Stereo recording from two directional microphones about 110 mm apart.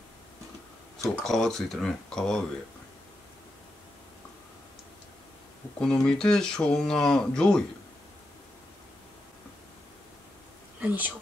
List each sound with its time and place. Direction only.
1.2 s speech: 5° left (ahead or behind)
5.8 s speech: 5° left (ahead or behind)
10.8 s speech: 15° right (ahead or behind)